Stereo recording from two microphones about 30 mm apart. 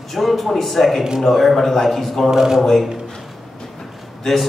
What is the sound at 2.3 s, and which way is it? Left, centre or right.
Speech, centre.